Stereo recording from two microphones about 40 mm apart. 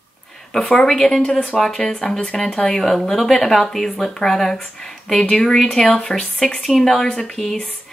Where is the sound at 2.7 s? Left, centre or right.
Centre.